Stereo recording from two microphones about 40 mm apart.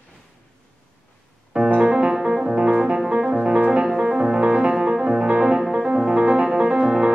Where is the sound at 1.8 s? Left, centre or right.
Right.